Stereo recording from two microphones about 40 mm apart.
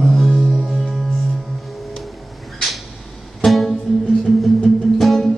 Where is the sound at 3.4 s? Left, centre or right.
Centre.